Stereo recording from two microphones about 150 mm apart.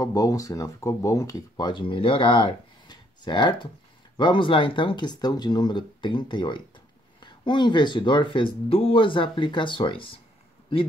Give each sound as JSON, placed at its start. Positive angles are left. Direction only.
{"t": 0.0, "sound": "speech", "side_deg": 25}